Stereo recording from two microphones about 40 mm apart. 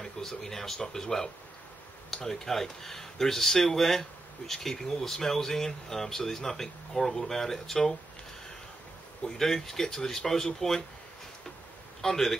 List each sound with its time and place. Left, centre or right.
0.0 s speech: centre
9.4 s speech: centre
12.0 s speech: centre